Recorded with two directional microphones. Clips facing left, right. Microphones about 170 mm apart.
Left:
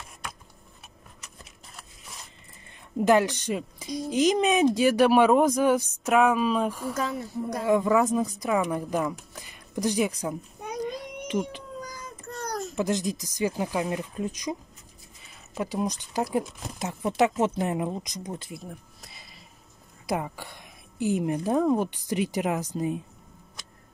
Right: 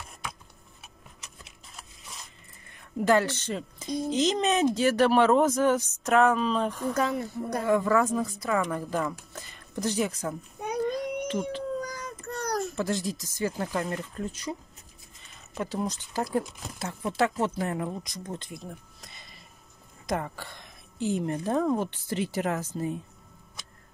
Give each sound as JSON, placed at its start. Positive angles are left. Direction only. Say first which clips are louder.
{"t": 3.0, "sound": "speech", "louder": "left 2 dB", "side_deg": 15}
{"t": 6.9, "sound": "a woman's voice", "louder": "right 2 dB", "side_deg": -60}
{"t": 7.6, "sound": "speech", "louder": "left 2 dB", "side_deg": 15}
{"t": 11.8, "sound": "child singing", "louder": "right 4 dB", "side_deg": -70}
{"t": 12.7, "sound": "speech", "louder": "left 3 dB", "side_deg": 20}